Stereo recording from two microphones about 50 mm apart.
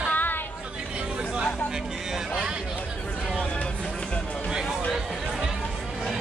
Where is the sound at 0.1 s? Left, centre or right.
Left.